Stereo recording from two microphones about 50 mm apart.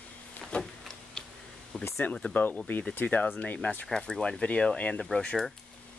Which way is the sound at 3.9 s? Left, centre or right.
Centre.